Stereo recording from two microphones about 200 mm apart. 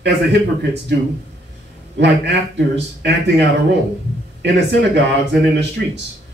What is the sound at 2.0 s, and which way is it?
Speech, 60° right (ahead or behind).